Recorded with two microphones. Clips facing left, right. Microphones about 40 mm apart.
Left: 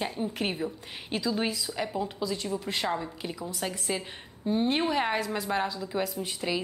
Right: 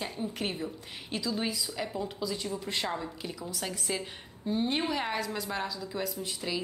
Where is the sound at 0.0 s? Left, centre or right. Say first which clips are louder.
Left 4 dB; centre.